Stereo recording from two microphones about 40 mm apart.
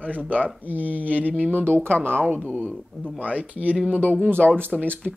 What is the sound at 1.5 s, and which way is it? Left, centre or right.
Speech, right.